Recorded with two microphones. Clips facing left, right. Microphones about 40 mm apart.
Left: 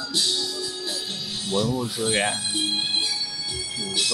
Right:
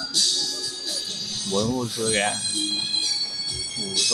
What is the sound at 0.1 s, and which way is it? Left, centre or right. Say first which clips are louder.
Music: left 1 dB; left.